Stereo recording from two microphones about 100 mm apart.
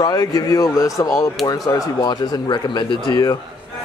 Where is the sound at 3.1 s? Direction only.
40° left (ahead or behind).